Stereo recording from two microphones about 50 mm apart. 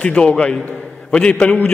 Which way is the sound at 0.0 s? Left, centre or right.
Left.